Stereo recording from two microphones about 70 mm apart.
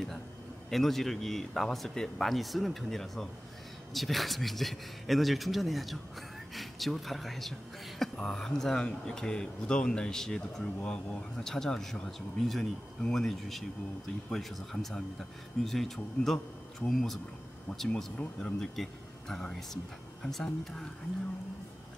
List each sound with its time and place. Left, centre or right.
0.7 s speech: centre
8.2 s speech: centre
18.1 s speech: centre